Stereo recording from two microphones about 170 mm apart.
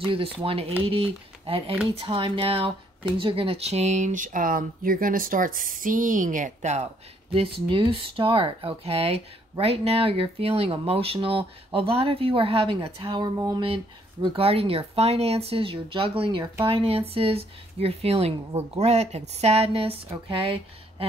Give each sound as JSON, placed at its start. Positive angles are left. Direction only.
{"t": 0.0, "sound": "speech", "side_deg": -30}
{"t": 7.3, "sound": "speech", "side_deg": -30}